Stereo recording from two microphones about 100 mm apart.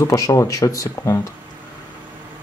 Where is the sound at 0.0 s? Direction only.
35° left (ahead or behind).